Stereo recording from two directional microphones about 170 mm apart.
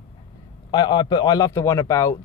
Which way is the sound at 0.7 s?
25° left (ahead or behind).